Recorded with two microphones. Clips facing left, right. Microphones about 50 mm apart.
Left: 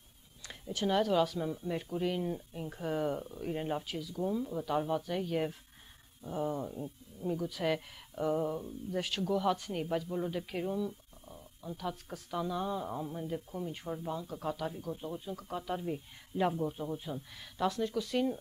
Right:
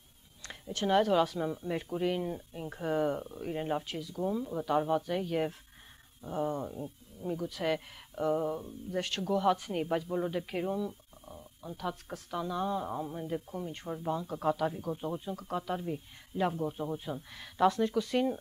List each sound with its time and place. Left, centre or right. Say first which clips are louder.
0.8 s speech: right 3 dB; centre
15.3 s speech: right 2 dB; centre